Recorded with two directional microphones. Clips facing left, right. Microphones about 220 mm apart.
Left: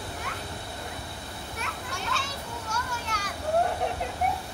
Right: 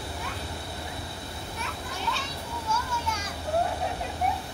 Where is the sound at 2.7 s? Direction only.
70° left (ahead or behind).